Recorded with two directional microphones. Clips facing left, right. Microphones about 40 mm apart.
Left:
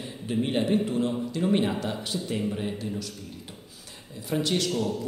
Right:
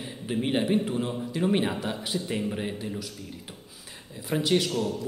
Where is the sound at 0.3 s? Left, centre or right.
Centre.